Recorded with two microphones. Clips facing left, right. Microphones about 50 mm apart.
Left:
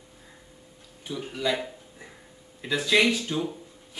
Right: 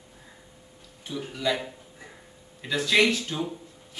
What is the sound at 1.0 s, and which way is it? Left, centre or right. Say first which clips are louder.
Speech: even; centre.